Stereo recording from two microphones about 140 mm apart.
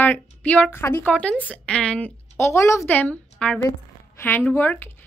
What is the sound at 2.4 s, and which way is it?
Speech, 20° left (ahead or behind).